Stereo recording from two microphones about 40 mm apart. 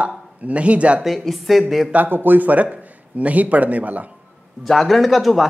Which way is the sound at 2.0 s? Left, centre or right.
Right.